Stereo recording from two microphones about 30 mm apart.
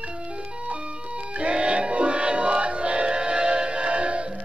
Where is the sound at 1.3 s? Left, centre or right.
Right.